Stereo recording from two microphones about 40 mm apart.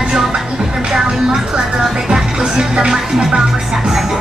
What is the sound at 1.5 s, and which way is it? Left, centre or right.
Music, centre.